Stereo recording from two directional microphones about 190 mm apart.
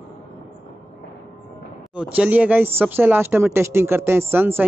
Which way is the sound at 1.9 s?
5° right (ahead or behind).